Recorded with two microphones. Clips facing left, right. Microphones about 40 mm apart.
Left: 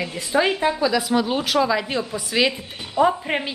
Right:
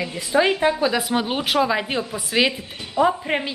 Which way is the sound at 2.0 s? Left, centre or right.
Centre.